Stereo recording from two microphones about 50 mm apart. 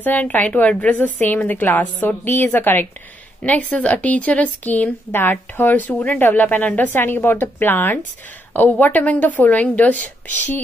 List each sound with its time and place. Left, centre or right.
0.0 s a woman's voice: left
3.4 s a woman's voice: left
5.1 s a woman's voice: left
7.0 s a woman's voice: left